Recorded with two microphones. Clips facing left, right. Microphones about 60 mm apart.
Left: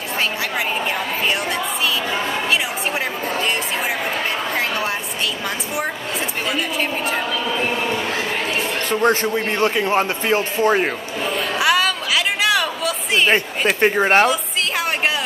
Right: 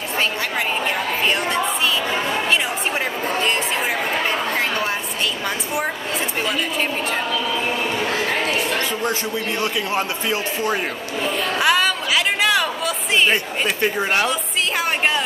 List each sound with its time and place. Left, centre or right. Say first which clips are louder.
9.0 s a man's voice: left 5 dB; left
11.3 s a sound: left 1 dB; centre
13.3 s a man's voice: left 3 dB; left